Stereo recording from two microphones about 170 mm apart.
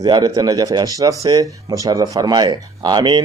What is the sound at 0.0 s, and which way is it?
Speech, 20° right (ahead or behind).